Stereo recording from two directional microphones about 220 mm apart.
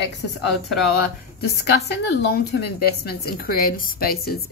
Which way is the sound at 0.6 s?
Centre (ahead or behind).